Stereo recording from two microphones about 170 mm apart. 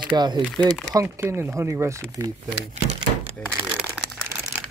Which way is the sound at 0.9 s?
15° right (ahead or behind).